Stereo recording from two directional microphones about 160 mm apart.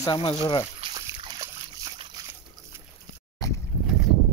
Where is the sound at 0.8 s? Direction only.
30° right (ahead or behind).